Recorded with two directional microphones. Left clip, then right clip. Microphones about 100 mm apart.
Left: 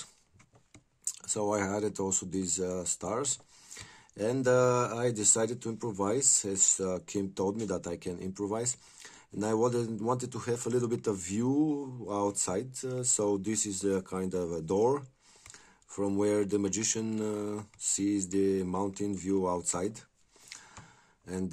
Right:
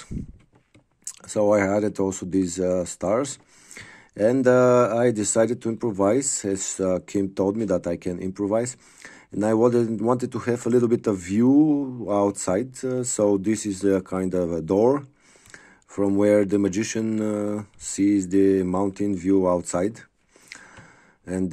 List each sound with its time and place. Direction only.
1.0 s speech: 40° right (ahead or behind)
15.5 s a sound: 40° right (ahead or behind)
16.2 s speech: 45° right (ahead or behind)